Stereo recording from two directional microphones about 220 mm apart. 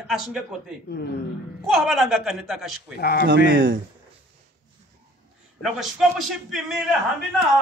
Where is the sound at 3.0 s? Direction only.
45° left (ahead or behind).